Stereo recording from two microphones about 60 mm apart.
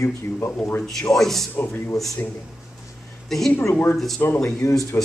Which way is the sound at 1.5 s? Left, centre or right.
Left.